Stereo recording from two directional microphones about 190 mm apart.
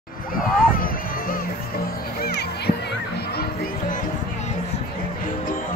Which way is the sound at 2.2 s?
60° left (ahead or behind).